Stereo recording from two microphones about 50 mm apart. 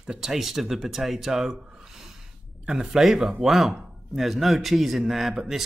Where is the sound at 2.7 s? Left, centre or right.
Centre.